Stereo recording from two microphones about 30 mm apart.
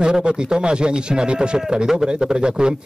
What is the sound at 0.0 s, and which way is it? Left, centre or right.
A man's voice, right.